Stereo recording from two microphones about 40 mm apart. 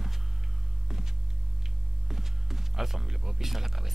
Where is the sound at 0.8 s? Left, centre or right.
Centre.